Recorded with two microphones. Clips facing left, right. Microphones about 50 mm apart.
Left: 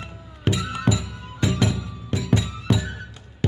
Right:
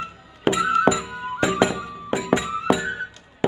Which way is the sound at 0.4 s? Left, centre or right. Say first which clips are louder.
Right 8 dB; centre.